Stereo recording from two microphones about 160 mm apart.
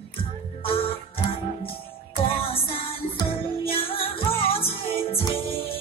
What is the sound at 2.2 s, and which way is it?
Music, 35° left (ahead or behind).